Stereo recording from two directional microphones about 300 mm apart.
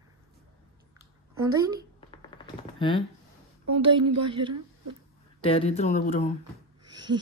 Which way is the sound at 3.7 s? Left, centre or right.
Centre.